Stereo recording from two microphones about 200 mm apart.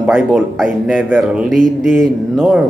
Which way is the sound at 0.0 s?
Centre (ahead or behind).